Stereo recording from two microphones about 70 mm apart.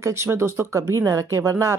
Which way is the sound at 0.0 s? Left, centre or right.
Right.